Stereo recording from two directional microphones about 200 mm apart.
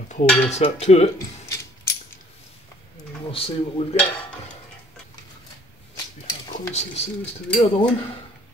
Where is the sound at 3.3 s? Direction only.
30° left (ahead or behind).